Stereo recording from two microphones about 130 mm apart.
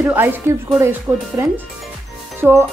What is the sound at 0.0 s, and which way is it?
Speech, 15° right (ahead or behind).